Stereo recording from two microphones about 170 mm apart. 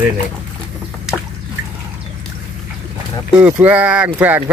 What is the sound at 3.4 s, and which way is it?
Speech, 10° right (ahead or behind).